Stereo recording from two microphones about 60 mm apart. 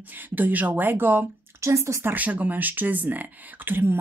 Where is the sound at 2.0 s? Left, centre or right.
Right.